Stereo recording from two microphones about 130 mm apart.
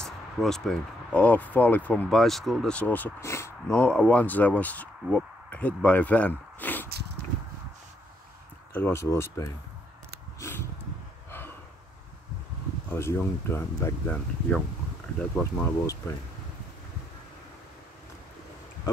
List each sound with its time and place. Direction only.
0.0 s speech: 5° left (ahead or behind); by 3.5 s 20° left (ahead or behind)
3.6 s speech: 10° left (ahead or behind)
8.7 s speech: 20° left (ahead or behind)
10.4 s a sound: 20° left (ahead or behind)
12.9 s speech: 20° left (ahead or behind)
15.1 s speech: 10° left (ahead or behind)